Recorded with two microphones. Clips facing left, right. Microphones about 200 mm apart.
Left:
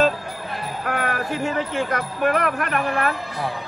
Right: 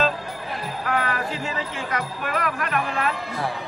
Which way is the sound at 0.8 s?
50° left (ahead or behind).